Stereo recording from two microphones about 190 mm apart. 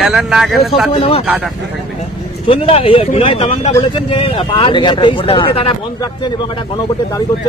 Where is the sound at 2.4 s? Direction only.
30° left (ahead or behind).